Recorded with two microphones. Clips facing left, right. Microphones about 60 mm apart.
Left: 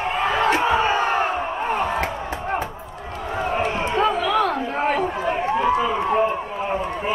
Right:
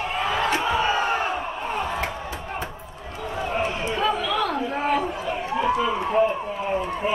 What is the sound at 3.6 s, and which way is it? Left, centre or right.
Chatter, left.